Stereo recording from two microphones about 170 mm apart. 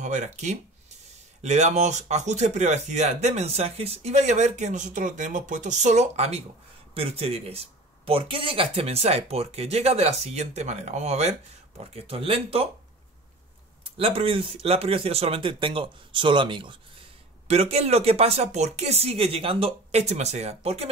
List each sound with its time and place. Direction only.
0.0 s speech: 45° right (ahead or behind)
13.8 s speech: 35° right (ahead or behind)